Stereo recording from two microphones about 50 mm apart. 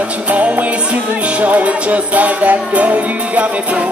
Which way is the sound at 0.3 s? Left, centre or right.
Right.